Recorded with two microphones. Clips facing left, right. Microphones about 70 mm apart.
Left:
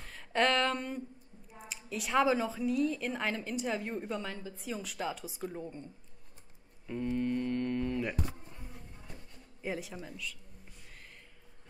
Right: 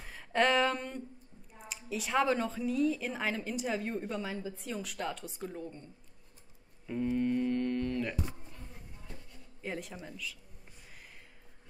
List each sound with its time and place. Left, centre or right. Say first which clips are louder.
0.0 s a sound: right 1 dB; centre
1.7 s a woman's voice: even; centre
5.6 s speech: left 1 dB; centre
6.9 s mantra: right 2 dB; centre
9.6 s a woman's voice: left 2 dB; centre